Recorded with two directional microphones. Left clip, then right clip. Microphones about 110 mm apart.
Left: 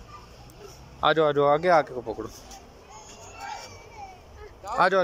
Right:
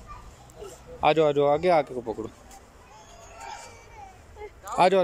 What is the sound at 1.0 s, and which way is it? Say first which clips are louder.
Speech: even; 20° right (ahead or behind).